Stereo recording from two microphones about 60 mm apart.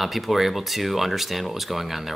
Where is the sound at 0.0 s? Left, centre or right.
Centre.